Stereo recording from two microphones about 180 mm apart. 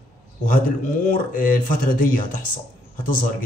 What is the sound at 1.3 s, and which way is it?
A man's voice, 50° left (ahead or behind).